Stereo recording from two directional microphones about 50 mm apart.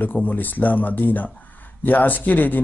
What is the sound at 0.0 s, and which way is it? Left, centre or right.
Speech, left.